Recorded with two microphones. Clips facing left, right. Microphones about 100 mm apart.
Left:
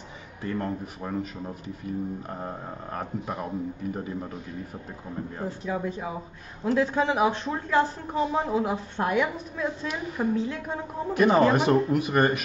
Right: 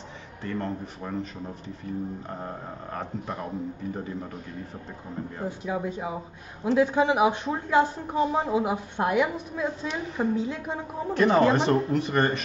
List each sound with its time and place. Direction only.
0.4 s speech: 10° left (ahead or behind)
5.4 s a woman's voice: 10° right (ahead or behind)
11.1 s speech: 10° left (ahead or behind)